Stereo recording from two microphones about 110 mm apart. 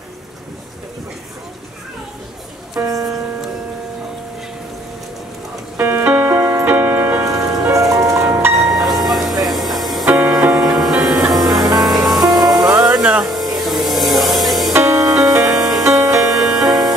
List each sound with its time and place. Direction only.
2.8 s music: 30° right (ahead or behind)
5.8 s music: 20° right (ahead or behind)
7.2 s music: 30° right (ahead or behind)
8.5 s music: centre (ahead or behind)
11.4 s music: 35° right (ahead or behind)
12.1 s music: centre (ahead or behind)
12.4 s music: 35° right (ahead or behind)
12.9 s music: 5° right (ahead or behind)
14.7 s music: 25° right (ahead or behind)
15.5 s music: centre (ahead or behind)
15.8 s music: 30° right (ahead or behind)
16.3 s music: 5° right (ahead or behind)